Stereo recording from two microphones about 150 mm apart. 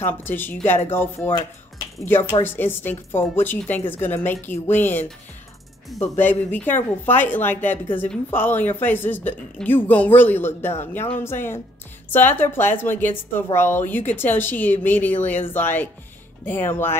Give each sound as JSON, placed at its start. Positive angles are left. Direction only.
{"t": 0.0, "sound": "a woman's voice", "side_deg": 15}
{"t": 2.4, "sound": "a woman's voice", "side_deg": 15}
{"t": 6.1, "sound": "a woman's voice", "side_deg": 15}